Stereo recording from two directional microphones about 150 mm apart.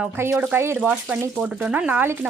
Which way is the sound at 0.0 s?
15° right (ahead or behind).